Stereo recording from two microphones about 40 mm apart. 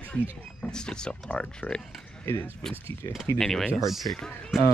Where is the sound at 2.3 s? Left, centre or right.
Left.